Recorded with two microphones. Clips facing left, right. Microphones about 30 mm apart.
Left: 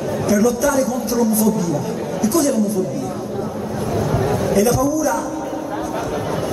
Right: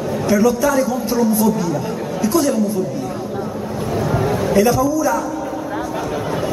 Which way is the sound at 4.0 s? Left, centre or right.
Centre.